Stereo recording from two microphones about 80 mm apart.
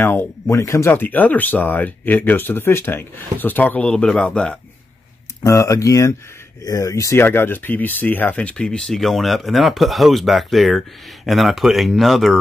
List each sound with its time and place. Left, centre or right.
0.0 s speech: left
0.5 s speech: left
0.9 s speech: left
3.9 s a man's voice: centre
5.4 s speech: left
7.2 s speech: left; by 12.4 s centre